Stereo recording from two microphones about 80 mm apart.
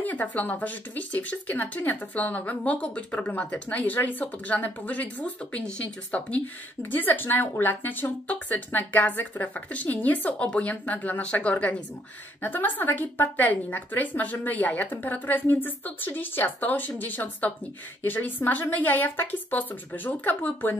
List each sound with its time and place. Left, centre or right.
0.0 s speech: centre